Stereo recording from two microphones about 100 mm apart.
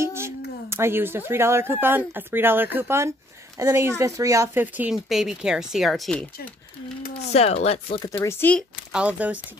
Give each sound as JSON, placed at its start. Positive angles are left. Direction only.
{"t": 0.0, "sound": "a woman's voice", "side_deg": -25}
{"t": 4.6, "sound": "speech", "side_deg": -15}
{"t": 4.9, "sound": "a woman's voice", "side_deg": -5}
{"t": 7.2, "sound": "chopping", "side_deg": 90}
{"t": 8.0, "sound": "speech", "side_deg": 30}
{"t": 8.9, "sound": "speech", "side_deg": -15}